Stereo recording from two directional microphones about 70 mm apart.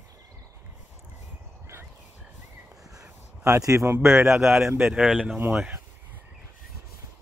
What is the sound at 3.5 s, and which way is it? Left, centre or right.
Speech, right.